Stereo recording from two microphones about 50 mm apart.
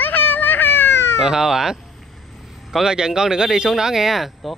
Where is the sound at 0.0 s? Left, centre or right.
Left.